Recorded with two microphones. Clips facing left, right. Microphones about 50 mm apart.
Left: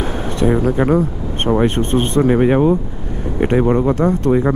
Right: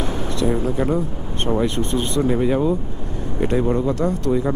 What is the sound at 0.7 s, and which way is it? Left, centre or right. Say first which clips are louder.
Speech: left 6 dB; left.